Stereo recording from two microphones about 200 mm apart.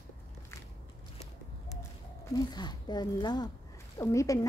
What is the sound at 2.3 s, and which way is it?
Speech, 20° left (ahead or behind).